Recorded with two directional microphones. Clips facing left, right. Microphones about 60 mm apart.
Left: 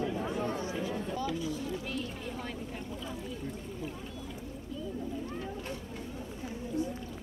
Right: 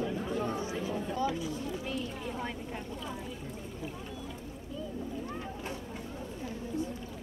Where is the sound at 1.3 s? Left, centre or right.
Right.